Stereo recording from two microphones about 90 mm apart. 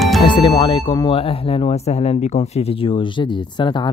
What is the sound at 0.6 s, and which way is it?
Speech, 70° left (ahead or behind).